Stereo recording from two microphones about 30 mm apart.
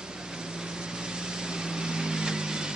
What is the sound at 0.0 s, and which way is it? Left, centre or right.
Vehicle, right.